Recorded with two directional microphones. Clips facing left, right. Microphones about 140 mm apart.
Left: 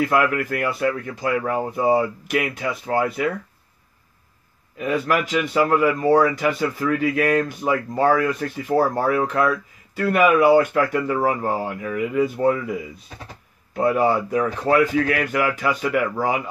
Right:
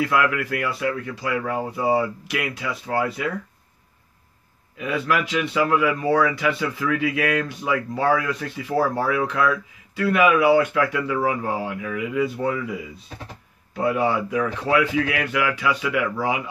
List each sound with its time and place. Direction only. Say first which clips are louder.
0.0 s a man's voice: left 2 dB; 45° left (ahead or behind)
4.7 s a man's voice: left 2 dB; 45° left (ahead or behind)
13.7 s a man's voice: left 3 dB; 40° left (ahead or behind)